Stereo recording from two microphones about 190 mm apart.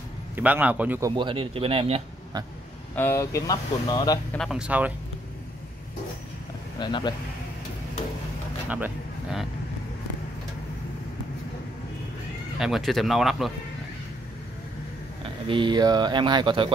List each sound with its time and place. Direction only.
0.4 s a man's voice: 10° right (ahead or behind)
1.1 s speech: 25° right (ahead or behind)
3.0 s speech: 15° left (ahead or behind)
4.3 s speech: centre (ahead or behind)
6.8 s speech: 25° left (ahead or behind)
8.6 s a sound: 5° right (ahead or behind)
12.5 s speech: centre (ahead or behind)
15.4 s speech: 25° right (ahead or behind)